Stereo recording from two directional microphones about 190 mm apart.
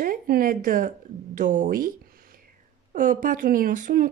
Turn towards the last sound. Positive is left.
turn(degrees=-45)  # may be behind; listen again after turning